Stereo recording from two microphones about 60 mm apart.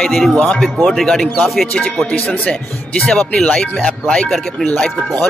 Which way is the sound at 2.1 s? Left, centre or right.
Centre.